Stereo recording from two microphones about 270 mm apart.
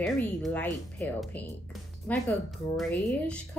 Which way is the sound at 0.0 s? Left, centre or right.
Centre.